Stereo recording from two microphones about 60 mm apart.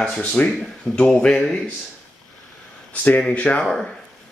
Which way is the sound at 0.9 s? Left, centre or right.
Left.